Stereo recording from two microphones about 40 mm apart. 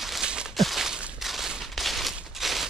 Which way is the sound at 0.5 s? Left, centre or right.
Centre.